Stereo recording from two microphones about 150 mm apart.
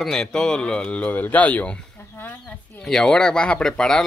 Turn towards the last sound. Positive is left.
turn(degrees=5)  # may be behind; listen again after turning